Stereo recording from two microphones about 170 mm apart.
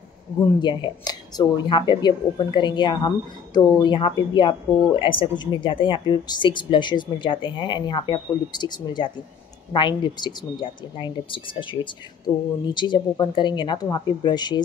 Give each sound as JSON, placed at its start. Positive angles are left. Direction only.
{"t": 0.6, "sound": "speech", "side_deg": 25}